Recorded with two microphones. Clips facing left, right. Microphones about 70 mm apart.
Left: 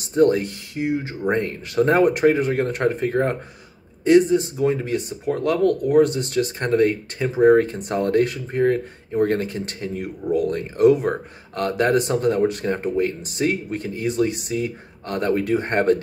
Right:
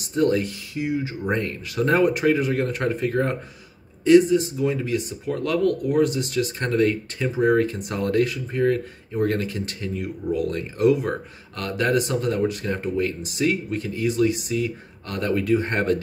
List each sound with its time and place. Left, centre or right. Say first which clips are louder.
0.0 s speech: left 4 dB; left